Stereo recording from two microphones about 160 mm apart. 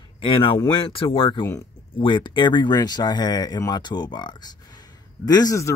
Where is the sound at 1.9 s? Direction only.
30° left (ahead or behind).